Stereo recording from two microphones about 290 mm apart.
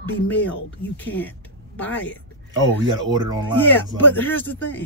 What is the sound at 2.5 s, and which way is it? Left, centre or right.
Speech, centre.